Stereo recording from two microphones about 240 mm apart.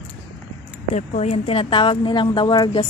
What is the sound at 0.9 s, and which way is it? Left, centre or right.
A woman's voice, left.